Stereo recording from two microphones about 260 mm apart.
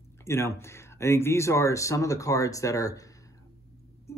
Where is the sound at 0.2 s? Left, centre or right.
Centre.